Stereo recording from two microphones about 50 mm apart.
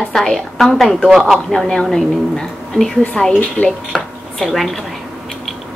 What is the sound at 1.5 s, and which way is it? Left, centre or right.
A woman's voice, centre.